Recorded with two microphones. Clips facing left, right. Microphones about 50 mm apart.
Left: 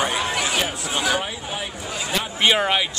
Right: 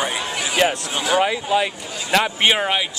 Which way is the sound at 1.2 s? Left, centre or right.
Right.